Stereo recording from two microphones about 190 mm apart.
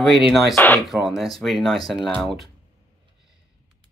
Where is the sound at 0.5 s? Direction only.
10° left (ahead or behind).